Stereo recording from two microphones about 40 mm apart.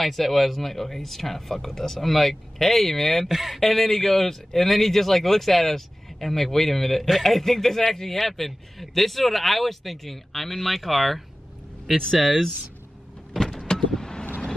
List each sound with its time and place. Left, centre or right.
0.0 s a man's voice: centre
3.3 s speech: centre
3.5 s a man's voice: centre
13.5 s vehicle: centre